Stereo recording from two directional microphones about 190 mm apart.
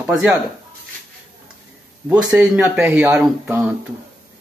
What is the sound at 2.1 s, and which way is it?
Speech, 20° right (ahead or behind).